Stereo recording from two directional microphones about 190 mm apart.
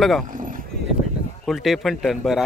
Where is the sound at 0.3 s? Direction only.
45° right (ahead or behind).